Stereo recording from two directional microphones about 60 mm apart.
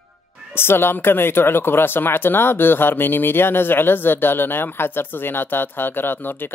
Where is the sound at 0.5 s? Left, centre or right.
Left.